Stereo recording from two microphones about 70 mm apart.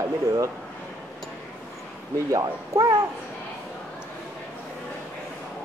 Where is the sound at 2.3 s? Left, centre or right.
Right.